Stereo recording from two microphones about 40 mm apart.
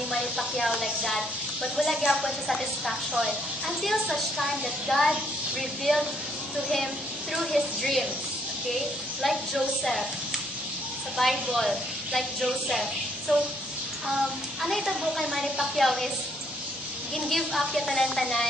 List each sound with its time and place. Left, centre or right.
0.1 s a sound: centre
1.8 s a woman's voice: centre
7.3 s a woman's voice: centre
11.1 s a woman's voice: centre
14.6 s a woman's voice: centre
17.3 s a woman's voice: centre